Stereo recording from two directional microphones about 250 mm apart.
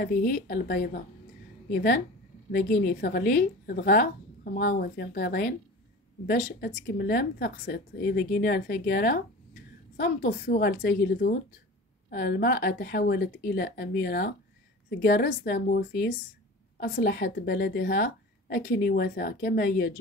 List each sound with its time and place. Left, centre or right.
0.0 s a woman's voice: left